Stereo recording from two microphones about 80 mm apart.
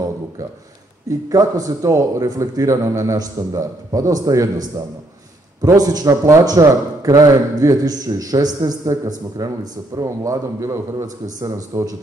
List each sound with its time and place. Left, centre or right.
1.3 s a man's voice: right